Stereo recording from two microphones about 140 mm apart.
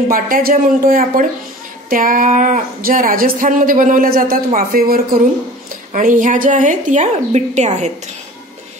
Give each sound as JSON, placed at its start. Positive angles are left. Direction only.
{"t": 0.1, "sound": "speech", "side_deg": -85}
{"t": 1.9, "sound": "a woman's voice", "side_deg": -75}
{"t": 5.9, "sound": "a woman's voice", "side_deg": -70}